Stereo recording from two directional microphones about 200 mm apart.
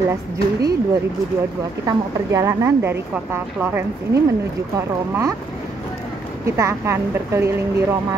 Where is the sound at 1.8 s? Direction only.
15° right (ahead or behind).